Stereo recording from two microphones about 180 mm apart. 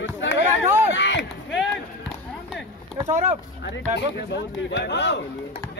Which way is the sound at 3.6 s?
70° left (ahead or behind).